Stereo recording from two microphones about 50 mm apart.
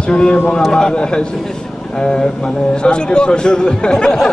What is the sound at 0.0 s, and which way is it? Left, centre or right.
A man's voice, centre.